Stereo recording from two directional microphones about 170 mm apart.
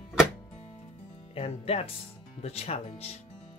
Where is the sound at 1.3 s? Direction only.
35° left (ahead or behind).